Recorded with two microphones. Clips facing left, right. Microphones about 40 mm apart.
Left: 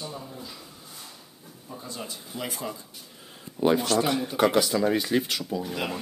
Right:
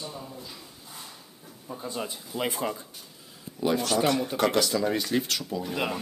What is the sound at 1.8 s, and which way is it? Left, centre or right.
Speech, right.